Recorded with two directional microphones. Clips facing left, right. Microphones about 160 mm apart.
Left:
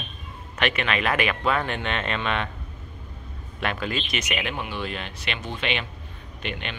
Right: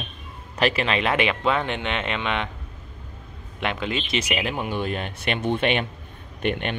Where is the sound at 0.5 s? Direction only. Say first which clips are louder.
Right 3 dB; 30° right (ahead or behind); by 2.5 s 15° right (ahead or behind).